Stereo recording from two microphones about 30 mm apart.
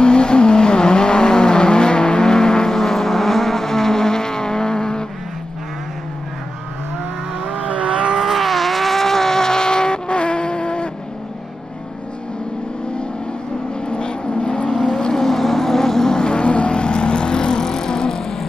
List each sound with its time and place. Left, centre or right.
0.0 s vehicle: left
7.4 s vehicle: right
8.1 s vehicle: centre; by 10.9 s left
13.7 s vehicle: left
15.0 s vehicle: centre